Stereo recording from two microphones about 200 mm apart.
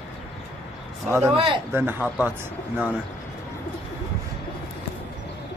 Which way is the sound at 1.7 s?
10° right (ahead or behind).